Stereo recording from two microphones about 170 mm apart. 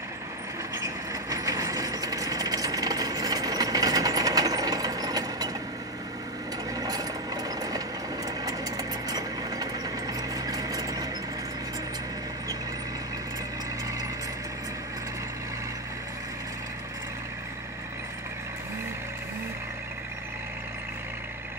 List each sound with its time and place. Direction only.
0.7 s vehicle: 20° right (ahead or behind)
6.7 s ratchet: 20° right (ahead or behind)
8.5 s engine: 20° right (ahead or behind)